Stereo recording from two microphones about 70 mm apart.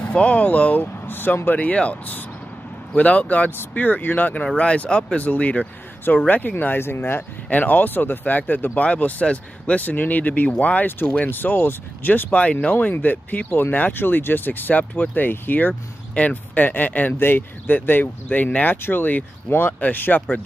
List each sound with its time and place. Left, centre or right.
0.1 s speech: centre
12.3 s speech: centre